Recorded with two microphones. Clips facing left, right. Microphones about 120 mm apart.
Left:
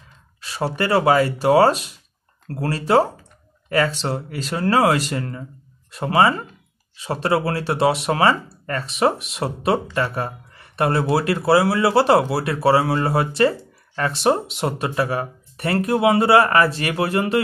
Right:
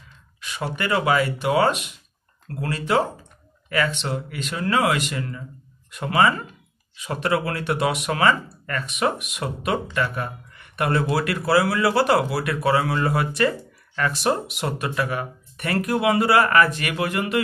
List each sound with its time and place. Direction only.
0.4 s speech: 35° left (ahead or behind)